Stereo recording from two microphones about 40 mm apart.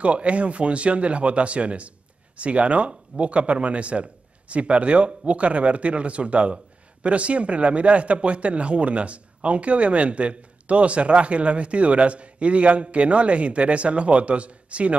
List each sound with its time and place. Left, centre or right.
0.0 s speech: right